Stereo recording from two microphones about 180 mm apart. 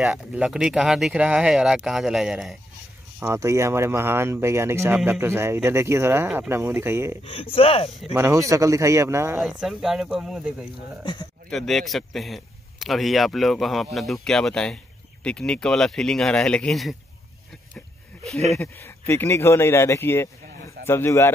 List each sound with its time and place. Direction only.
0.0 s speech: 5° right (ahead or behind)
3.2 s speech: 15° right (ahead or behind)
7.5 s speech: 30° left (ahead or behind)
8.1 s speech: 15° right (ahead or behind)
9.4 s speech: 5° right (ahead or behind)
11.1 s speech: 25° left (ahead or behind)
11.5 s speech: centre (ahead or behind)
17.7 s a sound: 5° left (ahead or behind)
18.6 s a man's voice: 10° left (ahead or behind)